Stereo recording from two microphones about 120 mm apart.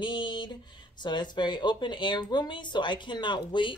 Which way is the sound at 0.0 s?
40° left (ahead or behind).